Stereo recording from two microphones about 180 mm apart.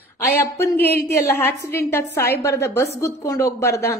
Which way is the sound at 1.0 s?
15° left (ahead or behind).